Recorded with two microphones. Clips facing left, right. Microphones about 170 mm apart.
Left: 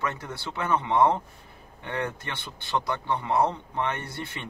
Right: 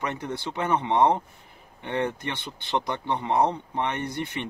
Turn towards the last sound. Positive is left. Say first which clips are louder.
# right 6 dB
turn(degrees=-15)  # may be behind; listen again after turning